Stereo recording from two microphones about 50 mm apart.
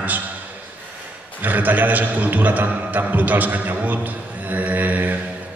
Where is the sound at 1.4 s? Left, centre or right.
Right.